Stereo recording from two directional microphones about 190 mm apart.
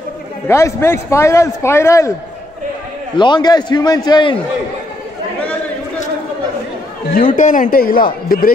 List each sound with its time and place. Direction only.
0.5 s a man's voice: 15° left (ahead or behind)
3.2 s a man's voice: 25° left (ahead or behind)
7.3 s a man's voice: 40° left (ahead or behind)